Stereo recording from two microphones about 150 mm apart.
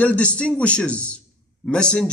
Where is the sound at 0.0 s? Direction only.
10° left (ahead or behind).